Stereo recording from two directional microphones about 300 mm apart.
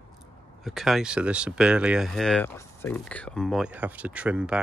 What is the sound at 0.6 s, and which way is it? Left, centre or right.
Speech, centre.